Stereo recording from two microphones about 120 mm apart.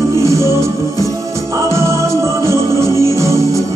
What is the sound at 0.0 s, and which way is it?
Music, 25° right (ahead or behind).